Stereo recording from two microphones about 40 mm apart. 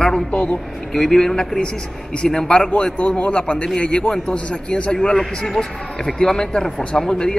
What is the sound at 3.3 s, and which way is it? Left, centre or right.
A man's voice, left.